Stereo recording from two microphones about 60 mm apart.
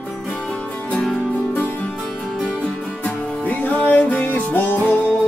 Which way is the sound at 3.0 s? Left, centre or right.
Left.